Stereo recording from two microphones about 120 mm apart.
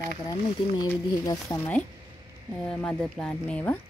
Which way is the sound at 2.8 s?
5° left (ahead or behind).